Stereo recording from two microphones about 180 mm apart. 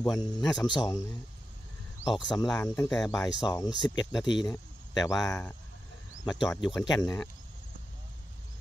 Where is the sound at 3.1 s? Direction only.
20° left (ahead or behind).